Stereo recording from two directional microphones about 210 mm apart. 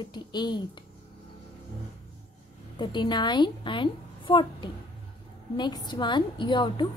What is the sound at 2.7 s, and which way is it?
A woman's voice, 20° left (ahead or behind).